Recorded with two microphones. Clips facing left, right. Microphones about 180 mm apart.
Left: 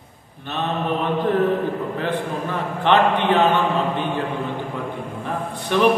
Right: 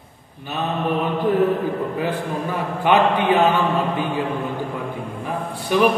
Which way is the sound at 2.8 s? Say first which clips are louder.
Even; 10° right (ahead or behind).